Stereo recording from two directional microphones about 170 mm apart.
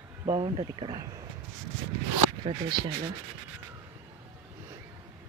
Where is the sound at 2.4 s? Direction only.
25° right (ahead or behind).